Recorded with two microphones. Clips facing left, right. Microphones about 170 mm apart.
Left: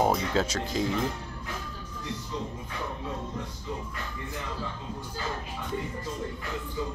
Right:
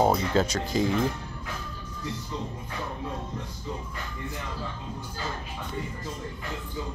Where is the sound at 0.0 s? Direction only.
Centre (ahead or behind).